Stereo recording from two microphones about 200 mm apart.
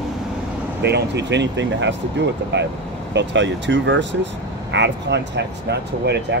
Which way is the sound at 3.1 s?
60° right (ahead or behind).